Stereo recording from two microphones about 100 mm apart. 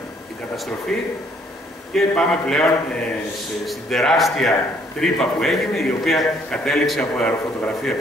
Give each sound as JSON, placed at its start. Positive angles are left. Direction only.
{"t": 0.9, "sound": "a man's voice", "side_deg": 5}